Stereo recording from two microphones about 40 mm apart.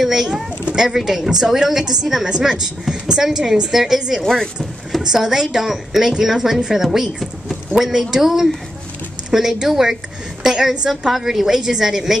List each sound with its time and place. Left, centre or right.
0.0 s a woman's voice: centre
5.2 s a woman's voice: centre
10.9 s a woman's voice: centre